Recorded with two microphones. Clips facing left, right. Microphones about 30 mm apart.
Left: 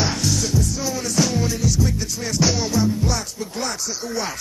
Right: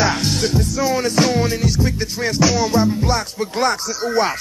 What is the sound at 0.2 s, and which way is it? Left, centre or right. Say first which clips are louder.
Music: right 3 dB; right.